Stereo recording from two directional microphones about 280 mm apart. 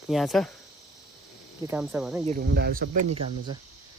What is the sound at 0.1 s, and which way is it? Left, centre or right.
Speech, centre.